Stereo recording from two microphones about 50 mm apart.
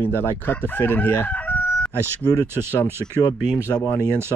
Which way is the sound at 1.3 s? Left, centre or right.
Left.